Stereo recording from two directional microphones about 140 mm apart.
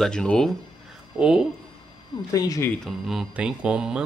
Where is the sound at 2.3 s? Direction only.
25° left (ahead or behind).